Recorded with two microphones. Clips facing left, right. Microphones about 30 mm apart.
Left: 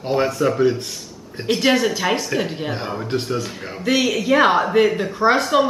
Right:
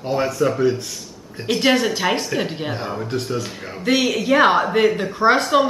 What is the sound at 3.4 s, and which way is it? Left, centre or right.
Speech, centre.